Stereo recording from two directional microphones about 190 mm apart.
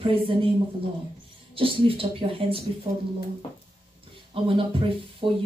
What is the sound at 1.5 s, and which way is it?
Speech, 30° right (ahead or behind).